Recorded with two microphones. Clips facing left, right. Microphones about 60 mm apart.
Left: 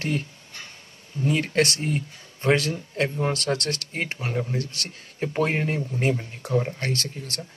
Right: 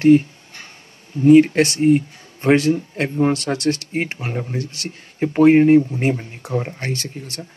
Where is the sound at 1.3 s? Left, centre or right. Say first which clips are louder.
Right 17 dB; centre.